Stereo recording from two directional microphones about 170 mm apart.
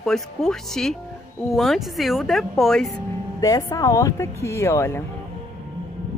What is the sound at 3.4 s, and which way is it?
Speech, 20° left (ahead or behind).